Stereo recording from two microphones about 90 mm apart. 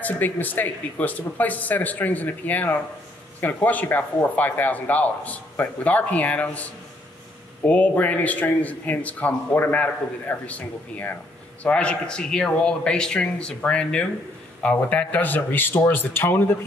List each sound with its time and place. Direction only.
0.0 s speech: 20° left (ahead or behind)